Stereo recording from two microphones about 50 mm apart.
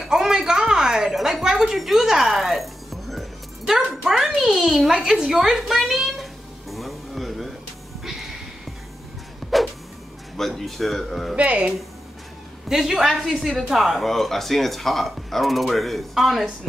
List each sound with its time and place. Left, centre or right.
0.0 s a sound: centre
1.8 s music: centre
4.2 s a child's voice: centre
6.7 s music: centre
8.0 s a sound: centre
9.4 s music: centre
10.3 s speech: centre
11.3 s speech: right
12.6 s speech: centre